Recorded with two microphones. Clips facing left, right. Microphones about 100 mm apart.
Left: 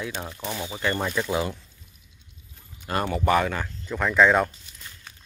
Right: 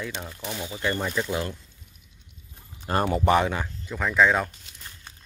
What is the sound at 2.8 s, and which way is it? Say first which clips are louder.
Speech: right 2 dB; 30° right (ahead or behind).